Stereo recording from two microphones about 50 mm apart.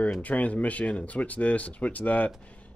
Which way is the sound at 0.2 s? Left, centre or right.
Left.